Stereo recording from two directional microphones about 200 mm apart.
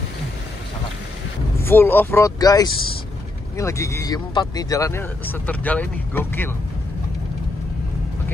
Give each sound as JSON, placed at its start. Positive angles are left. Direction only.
{"t": 1.6, "sound": "speech", "side_deg": 10}